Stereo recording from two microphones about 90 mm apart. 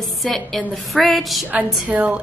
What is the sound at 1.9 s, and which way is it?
Speech, 15° right (ahead or behind).